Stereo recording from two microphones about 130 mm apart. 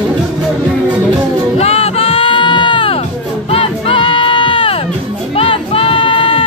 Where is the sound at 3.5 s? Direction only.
45° left (ahead or behind).